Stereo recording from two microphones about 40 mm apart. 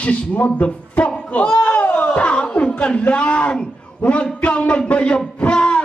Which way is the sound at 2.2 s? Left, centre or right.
Left.